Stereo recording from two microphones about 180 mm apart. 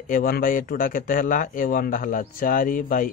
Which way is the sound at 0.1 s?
50° left (ahead or behind).